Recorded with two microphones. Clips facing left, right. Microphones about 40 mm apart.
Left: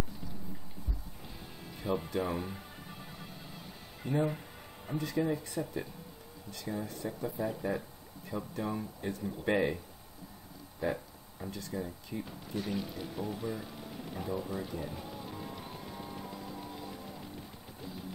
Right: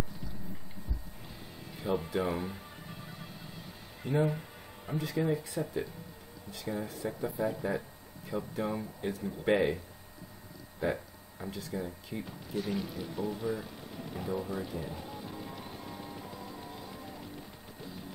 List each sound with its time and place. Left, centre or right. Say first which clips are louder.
1.8 s speech: right 1 dB; centre
4.0 s speech: right 2 dB; centre
9.1 s speech: even; centre
9.4 s speech: right 3 dB; centre
10.8 s a sound: right 2 dB; centre
11.5 s speech: right 1 dB; centre
12.3 s speech: right 3 dB; centre